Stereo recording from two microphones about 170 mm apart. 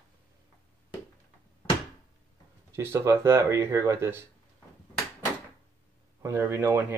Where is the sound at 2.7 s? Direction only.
15° right (ahead or behind).